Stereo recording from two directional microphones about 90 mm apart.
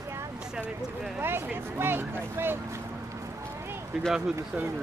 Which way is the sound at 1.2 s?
25° right (ahead or behind).